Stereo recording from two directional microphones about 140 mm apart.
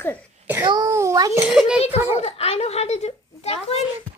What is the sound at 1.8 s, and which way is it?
A child's voice, 50° left (ahead or behind).